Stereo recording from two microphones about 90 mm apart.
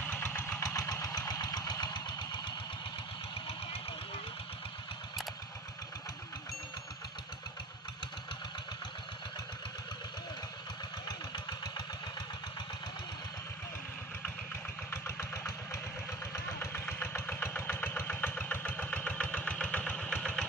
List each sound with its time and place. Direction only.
0.1 s vehicle: 25° left (ahead or behind); by 2.5 s 55° left (ahead or behind)
11.1 s vehicle: 55° left (ahead or behind)
14.9 s engine: 30° left (ahead or behind)
16.8 s vehicle: 25° left (ahead or behind); by 20.4 s 5° left (ahead or behind)